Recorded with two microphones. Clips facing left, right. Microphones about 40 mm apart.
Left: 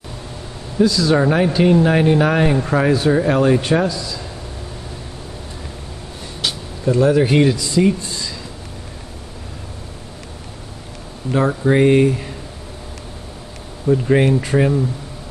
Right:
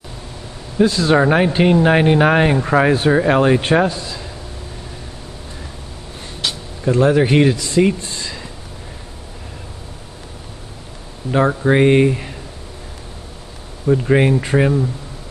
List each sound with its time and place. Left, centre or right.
0.8 s speech: right
1.1 s speech: right
6.9 s speech: right
7.5 s speech: right
8.2 s a sound: right
11.3 s speech: right
13.8 s speech: centre
14.4 s speech: right